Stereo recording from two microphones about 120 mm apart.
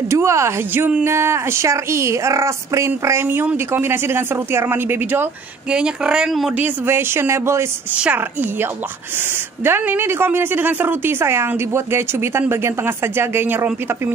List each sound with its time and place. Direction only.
0.1 s speech: 25° right (ahead or behind)
7.9 s a woman's voice: 10° right (ahead or behind)